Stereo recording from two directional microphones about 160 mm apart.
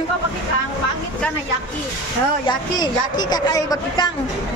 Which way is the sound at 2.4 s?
25° left (ahead or behind).